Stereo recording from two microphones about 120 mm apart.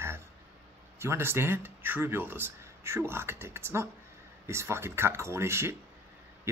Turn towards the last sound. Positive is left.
turn(degrees=-20)  # may be behind; listen again after turning